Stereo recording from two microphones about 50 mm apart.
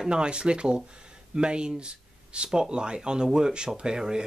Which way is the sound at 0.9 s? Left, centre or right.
Centre.